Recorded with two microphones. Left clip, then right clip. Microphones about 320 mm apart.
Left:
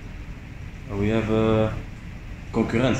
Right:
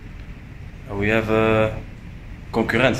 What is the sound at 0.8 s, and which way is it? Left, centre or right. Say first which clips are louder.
Speech: right 4 dB; right.